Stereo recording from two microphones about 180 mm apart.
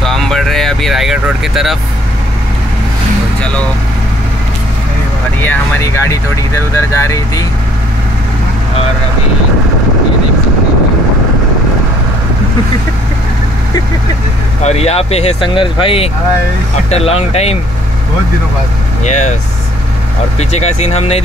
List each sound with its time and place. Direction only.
0.0 s vehicle: centre (ahead or behind)
5.4 s speech: 10° left (ahead or behind)
14.6 s speech: 35° left (ahead or behind)
19.0 s speech: 40° left (ahead or behind)
20.3 s speech: 40° left (ahead or behind)